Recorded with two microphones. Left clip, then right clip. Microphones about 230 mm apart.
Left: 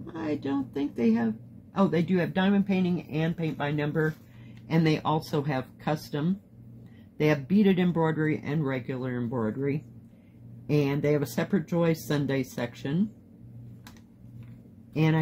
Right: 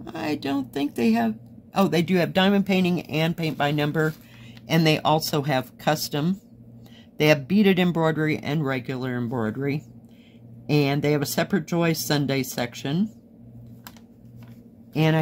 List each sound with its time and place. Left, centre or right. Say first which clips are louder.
0.0 s speech: right 4 dB; right